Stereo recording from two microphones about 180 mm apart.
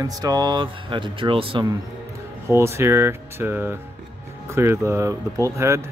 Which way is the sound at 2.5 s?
15° right (ahead or behind).